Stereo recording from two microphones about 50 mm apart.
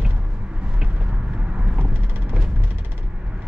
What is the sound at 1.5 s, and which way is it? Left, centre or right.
Vehicle, right.